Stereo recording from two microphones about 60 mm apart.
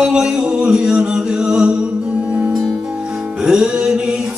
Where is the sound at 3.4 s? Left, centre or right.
Centre.